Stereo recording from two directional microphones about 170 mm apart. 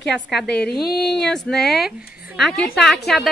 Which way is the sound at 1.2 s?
5° left (ahead or behind).